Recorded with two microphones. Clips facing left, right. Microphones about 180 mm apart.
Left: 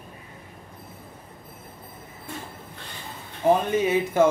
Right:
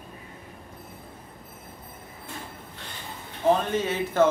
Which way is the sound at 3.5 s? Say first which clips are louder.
Left 4 dB; 10° left (ahead or behind).